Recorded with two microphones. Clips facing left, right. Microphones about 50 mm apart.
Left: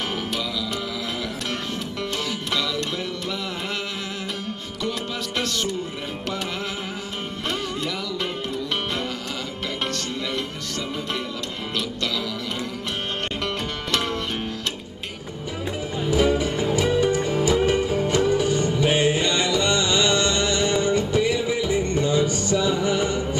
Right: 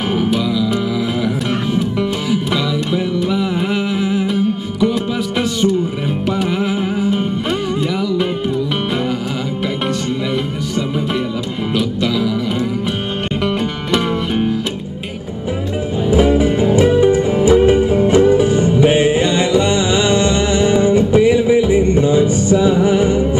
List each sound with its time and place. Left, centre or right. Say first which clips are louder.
0.2 s music: right 11 dB; centre
1.8 s music: right 10 dB; centre
6.6 s music: right 13 dB; centre
11.7 s music: right 10 dB; centre
13.9 s music: right 9 dB; centre
16.1 s music: right 7 dB; right